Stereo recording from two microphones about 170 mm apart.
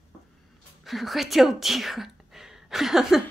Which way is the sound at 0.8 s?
Centre (ahead or behind).